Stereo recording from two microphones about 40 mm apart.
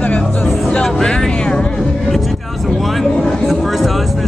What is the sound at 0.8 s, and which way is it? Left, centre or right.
Vehicle, centre.